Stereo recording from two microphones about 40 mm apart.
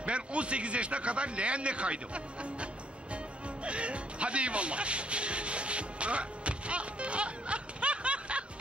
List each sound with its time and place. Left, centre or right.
0.0 s speech: right
3.6 s music: right